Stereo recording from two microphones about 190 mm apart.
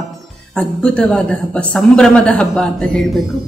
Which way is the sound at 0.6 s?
5° left (ahead or behind).